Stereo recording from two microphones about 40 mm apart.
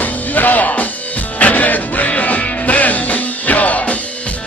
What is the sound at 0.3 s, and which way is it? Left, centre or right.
Music, left.